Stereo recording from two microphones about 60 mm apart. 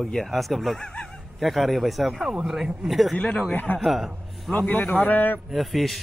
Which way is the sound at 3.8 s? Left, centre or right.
Centre.